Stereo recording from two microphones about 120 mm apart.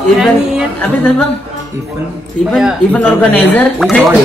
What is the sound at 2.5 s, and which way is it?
Speech, 5° right (ahead or behind).